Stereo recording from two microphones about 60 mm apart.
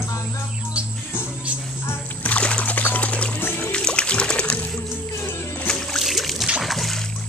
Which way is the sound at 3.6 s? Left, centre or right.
Centre.